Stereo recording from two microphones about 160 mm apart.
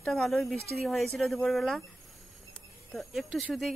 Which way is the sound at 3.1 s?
Centre (ahead or behind).